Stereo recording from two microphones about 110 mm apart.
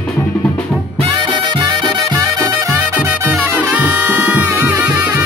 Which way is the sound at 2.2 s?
25° right (ahead or behind).